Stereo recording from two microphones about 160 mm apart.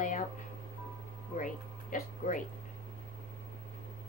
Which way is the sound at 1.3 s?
55° left (ahead or behind).